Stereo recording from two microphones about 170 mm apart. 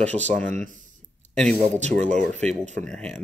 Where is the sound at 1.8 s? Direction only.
45° right (ahead or behind).